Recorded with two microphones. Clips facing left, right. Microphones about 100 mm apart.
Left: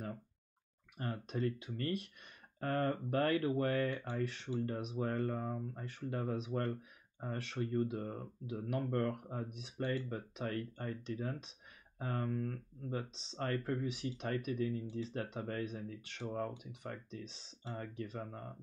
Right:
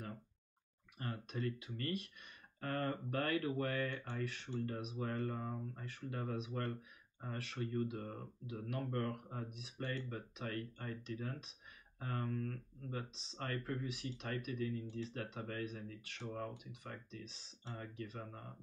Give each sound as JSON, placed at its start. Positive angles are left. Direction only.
{"t": 0.9, "sound": "speech", "side_deg": 30}